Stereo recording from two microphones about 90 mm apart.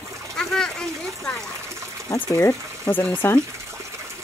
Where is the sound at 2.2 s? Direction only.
30° left (ahead or behind).